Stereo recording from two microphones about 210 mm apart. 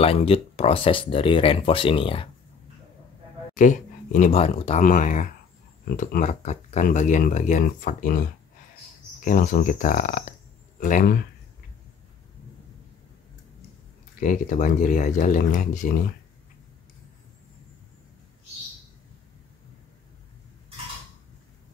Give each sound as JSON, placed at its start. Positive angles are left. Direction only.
{"t": 0.0, "sound": "speech", "side_deg": 30}
{"t": 3.5, "sound": "speech", "side_deg": 40}
{"t": 14.2, "sound": "speech", "side_deg": 35}